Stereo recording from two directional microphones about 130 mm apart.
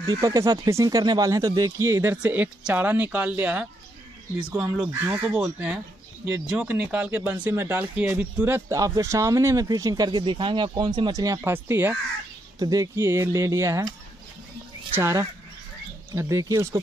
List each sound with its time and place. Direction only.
0.0 s speech: 30° right (ahead or behind)
12.5 s speech: 30° right (ahead or behind)
15.0 s speech: 20° right (ahead or behind)